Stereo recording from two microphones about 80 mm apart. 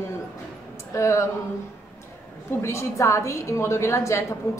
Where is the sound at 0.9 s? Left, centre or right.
Left.